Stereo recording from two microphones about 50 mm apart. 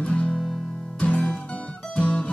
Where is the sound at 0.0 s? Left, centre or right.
Left.